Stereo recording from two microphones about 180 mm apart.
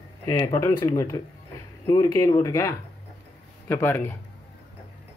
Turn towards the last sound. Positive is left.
turn(degrees=10)  # may be behind; listen again after turning